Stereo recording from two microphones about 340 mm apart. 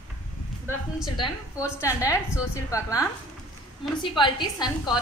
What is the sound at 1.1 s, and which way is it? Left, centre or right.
A woman's voice, centre.